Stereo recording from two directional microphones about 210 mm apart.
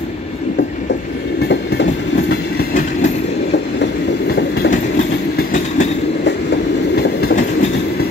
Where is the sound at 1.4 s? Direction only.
55° left (ahead or behind).